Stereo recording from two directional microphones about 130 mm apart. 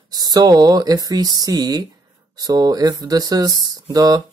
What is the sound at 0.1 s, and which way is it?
Speech, 30° right (ahead or behind).